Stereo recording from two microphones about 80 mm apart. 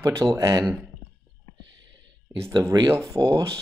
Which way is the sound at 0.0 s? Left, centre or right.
Right.